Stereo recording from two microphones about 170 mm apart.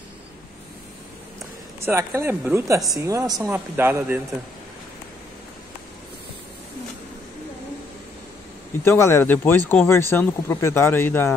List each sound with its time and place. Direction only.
1.8 s speech: 15° right (ahead or behind)
8.8 s speech: 15° left (ahead or behind)